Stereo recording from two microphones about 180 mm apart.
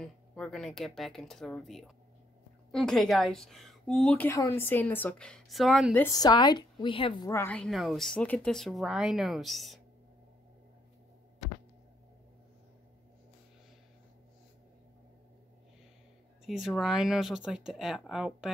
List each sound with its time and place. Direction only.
0.0 s a woman's voice: 5° left (ahead or behind)
6.0 s a woman's voice: 20° left (ahead or behind)
7.2 s a woman's voice: 15° left (ahead or behind)
16.4 s a woman's voice: centre (ahead or behind)